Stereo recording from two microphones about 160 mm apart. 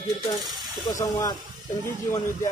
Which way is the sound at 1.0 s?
25° left (ahead or behind).